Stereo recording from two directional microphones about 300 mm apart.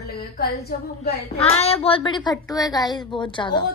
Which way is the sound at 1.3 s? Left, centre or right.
Centre.